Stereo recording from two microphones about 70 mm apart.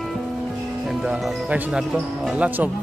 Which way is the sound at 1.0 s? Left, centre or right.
Centre.